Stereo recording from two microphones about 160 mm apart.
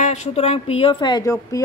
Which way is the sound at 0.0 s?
45° left (ahead or behind).